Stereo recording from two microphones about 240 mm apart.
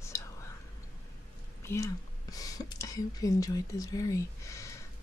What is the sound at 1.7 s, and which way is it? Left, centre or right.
Speech, centre.